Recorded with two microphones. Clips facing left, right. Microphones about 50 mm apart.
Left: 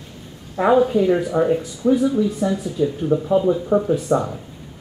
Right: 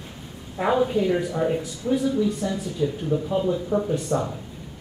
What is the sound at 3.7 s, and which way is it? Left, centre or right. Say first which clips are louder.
Speech: left 6 dB; left.